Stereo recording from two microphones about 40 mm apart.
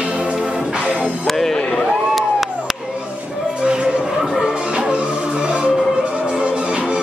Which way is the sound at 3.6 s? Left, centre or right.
Right.